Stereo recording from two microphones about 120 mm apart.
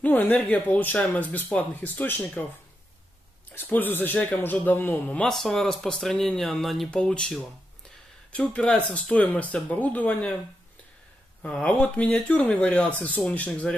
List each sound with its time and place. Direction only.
0.0 s speech: 15° left (ahead or behind)
3.5 s speech: 15° left (ahead or behind)
5.2 s speech: 5° left (ahead or behind)
11.4 s speech: 10° left (ahead or behind)